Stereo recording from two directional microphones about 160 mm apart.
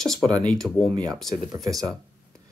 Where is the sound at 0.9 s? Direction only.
25° right (ahead or behind).